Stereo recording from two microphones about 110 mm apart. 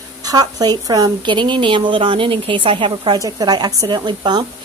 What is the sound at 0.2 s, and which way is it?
A woman's voice, 35° right (ahead or behind).